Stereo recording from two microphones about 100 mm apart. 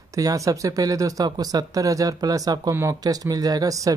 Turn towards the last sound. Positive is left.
turn(degrees=-35)  # may be behind; listen again after turning